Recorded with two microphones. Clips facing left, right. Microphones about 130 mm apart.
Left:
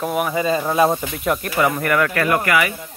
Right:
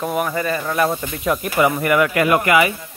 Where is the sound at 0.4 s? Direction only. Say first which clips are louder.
Left 6 dB; 20° left (ahead or behind).